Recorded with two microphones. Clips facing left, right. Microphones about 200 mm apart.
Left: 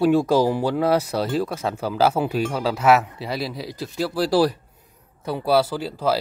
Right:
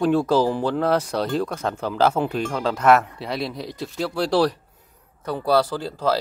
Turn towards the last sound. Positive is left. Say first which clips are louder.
# even
turn(degrees=5)  # may be behind; listen again after turning